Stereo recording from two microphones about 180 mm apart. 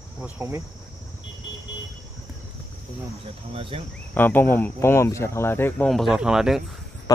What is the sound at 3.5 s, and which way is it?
Speech, 30° right (ahead or behind).